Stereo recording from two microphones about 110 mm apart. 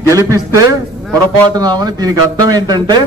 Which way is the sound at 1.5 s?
40° right (ahead or behind).